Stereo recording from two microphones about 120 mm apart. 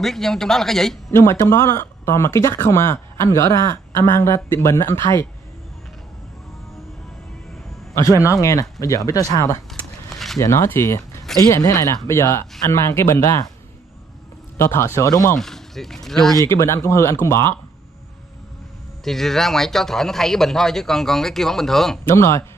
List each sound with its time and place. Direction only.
0.0 s speech: 5° left (ahead or behind)
1.1 s speech: 20° left (ahead or behind)
7.9 s speech: 25° left (ahead or behind)
9.7 s a sound: centre (ahead or behind)
10.4 s speech: 25° left (ahead or behind)
14.6 s speech: 20° left (ahead or behind)
15.3 s speech: 5° left (ahead or behind)
16.4 s speech: 25° left (ahead or behind)
19.0 s speech: 5° left (ahead or behind)
22.0 s speech: 25° left (ahead or behind)